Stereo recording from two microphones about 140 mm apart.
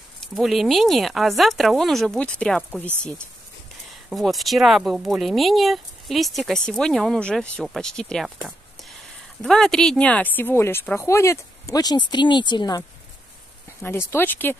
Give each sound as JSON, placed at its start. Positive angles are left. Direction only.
{"t": 0.2, "sound": "speech", "side_deg": 0}
{"t": 4.1, "sound": "speech", "side_deg": 0}
{"t": 9.4, "sound": "speech", "side_deg": 5}
{"t": 13.7, "sound": "speech", "side_deg": 15}